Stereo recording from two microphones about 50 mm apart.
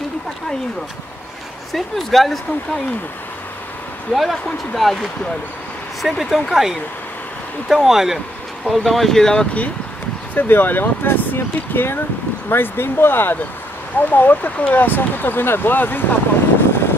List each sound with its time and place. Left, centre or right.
1.7 s speech: centre
4.1 s speech: centre
6.0 s speech: centre
10.3 s speech: left
16.5 s vehicle: left